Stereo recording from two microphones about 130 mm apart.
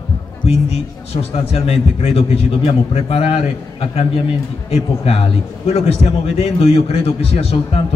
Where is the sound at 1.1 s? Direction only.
50° left (ahead or behind).